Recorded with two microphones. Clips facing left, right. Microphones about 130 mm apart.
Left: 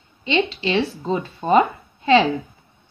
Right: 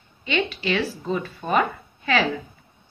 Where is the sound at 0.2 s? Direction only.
25° left (ahead or behind).